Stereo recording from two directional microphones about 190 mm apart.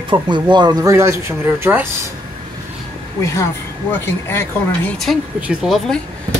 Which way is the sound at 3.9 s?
10° left (ahead or behind).